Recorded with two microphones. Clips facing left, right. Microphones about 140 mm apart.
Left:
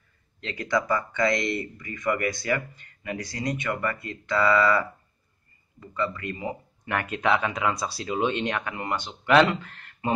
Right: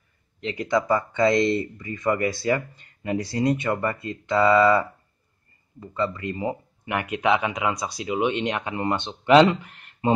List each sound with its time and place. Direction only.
0.4 s speech: 20° right (ahead or behind)
6.9 s speech: 15° right (ahead or behind)